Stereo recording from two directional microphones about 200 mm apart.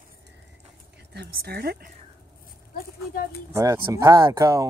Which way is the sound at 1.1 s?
50° right (ahead or behind).